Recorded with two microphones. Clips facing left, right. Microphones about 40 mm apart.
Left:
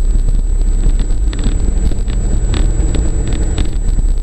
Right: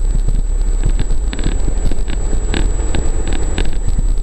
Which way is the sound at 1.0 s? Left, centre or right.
Centre.